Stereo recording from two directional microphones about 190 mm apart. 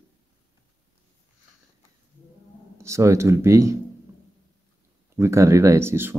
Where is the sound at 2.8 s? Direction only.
15° right (ahead or behind).